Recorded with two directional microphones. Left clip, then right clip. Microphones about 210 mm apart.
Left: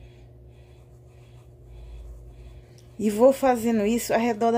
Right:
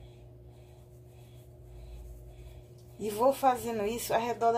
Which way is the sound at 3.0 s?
35° left (ahead or behind).